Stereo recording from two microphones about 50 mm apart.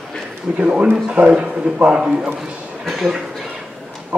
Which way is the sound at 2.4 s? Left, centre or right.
Centre.